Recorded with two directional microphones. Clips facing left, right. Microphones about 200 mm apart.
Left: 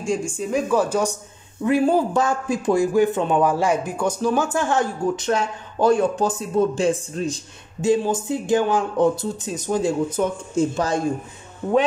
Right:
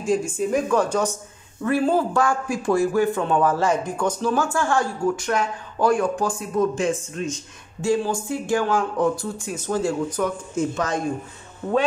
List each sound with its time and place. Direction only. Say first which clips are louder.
0.0 s a man's voice: right 2 dB; 5° right (ahead or behind); by 7.4 s 35° left (ahead or behind)
7.8 s a man's voice: left 3 dB; 20° left (ahead or behind)